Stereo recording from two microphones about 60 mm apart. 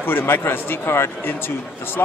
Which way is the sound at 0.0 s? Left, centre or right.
Left.